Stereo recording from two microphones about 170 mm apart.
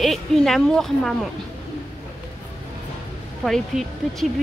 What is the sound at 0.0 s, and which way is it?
Speech, centre (ahead or behind).